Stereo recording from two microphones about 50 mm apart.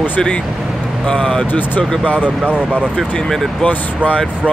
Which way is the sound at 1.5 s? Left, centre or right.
Left.